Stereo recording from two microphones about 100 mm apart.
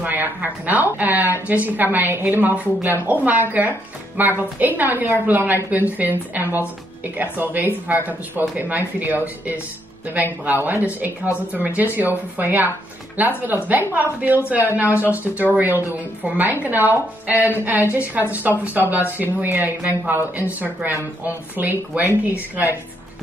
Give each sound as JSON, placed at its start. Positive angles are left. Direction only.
{"t": 0.0, "sound": "speech", "side_deg": -15}